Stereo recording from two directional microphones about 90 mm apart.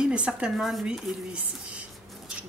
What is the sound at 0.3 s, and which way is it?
Speech, 5° right (ahead or behind).